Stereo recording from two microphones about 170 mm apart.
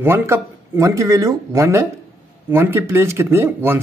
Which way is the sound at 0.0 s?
15° right (ahead or behind).